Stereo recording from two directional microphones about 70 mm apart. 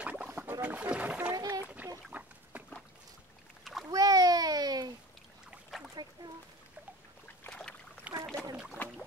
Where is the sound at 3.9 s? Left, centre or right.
Right.